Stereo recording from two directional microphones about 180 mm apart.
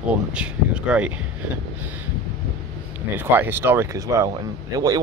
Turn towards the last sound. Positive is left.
turn(degrees=-20)  # may be behind; listen again after turning